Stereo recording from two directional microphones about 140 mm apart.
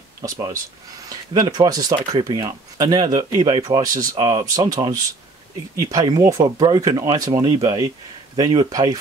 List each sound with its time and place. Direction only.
1.0 s speech: 25° right (ahead or behind)